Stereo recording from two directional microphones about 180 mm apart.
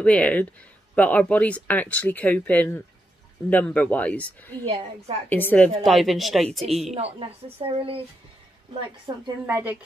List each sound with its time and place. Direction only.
0.0 s speech: 5° left (ahead or behind)
4.6 s speech: 35° right (ahead or behind)
5.3 s speech: 10° left (ahead or behind)
5.9 s speech: centre (ahead or behind)
6.9 s a woman's voice: 35° right (ahead or behind)
9.5 s a woman's voice: 10° right (ahead or behind)